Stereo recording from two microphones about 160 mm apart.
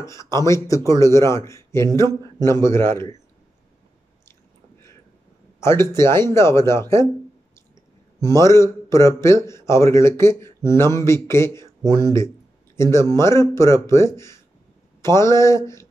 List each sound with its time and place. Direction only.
0.0 s a man's voice: 20° left (ahead or behind)
5.6 s a man's voice: 15° left (ahead or behind)
8.2 s a man's voice: 20° left (ahead or behind)